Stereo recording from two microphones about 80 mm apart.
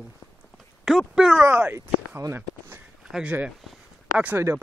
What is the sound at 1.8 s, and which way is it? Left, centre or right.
Speech, right.